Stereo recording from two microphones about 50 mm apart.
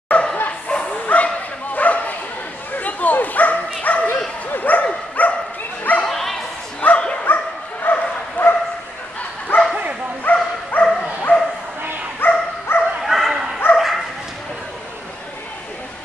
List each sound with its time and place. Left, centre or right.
0.1 s dog: left
1.0 s bow-wow: left
6.0 s bow-wow: centre
6.8 s bow-wow: left
10.3 s dog: left
11.3 s bow-wow: left
12.2 s dog: left
13.0 s bow-wow: centre
13.7 s dog: centre